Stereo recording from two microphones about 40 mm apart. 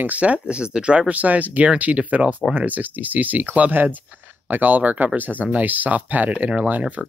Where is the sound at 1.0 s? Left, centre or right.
Right.